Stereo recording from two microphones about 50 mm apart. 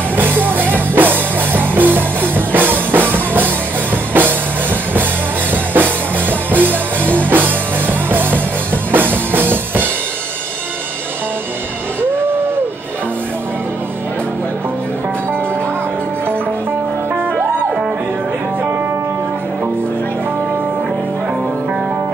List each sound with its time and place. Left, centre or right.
0.1 s music: right
5.5 s music: right